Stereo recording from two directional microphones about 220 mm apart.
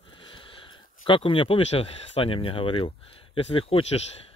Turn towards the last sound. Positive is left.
turn(degrees=25)  # may be behind; listen again after turning